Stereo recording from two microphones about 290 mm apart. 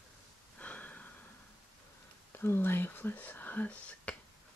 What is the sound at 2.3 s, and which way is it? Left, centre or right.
Speech, centre.